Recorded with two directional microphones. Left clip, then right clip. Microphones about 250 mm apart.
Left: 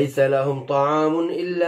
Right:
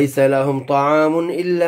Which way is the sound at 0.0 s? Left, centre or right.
Right.